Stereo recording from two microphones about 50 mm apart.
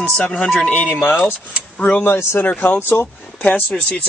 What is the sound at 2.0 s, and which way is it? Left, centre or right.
Speech, left.